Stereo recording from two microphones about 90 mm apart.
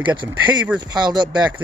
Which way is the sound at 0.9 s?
50° right (ahead or behind).